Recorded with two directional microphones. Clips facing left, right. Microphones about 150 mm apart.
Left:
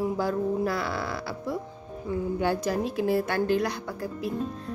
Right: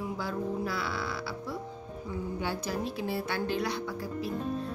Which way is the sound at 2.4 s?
50° left (ahead or behind).